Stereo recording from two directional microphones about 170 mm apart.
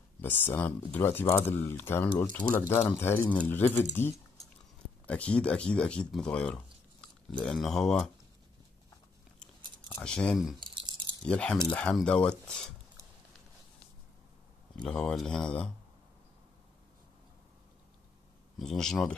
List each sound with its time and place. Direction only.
0.2 s speech: 10° left (ahead or behind)
5.0 s speech: 5° left (ahead or behind)
9.8 s speech: 10° left (ahead or behind)
10.6 s a sound: 30° right (ahead or behind)
11.2 s speech: 5° left (ahead or behind)
14.8 s speech: 5° left (ahead or behind)
18.6 s speech: centre (ahead or behind)